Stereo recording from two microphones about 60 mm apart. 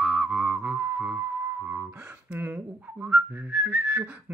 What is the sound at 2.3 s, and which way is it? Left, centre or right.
Whistling, right.